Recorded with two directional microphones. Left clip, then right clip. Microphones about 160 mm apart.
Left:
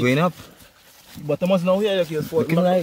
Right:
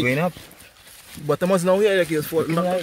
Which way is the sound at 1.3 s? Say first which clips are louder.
Right 1 dB; 30° right (ahead or behind).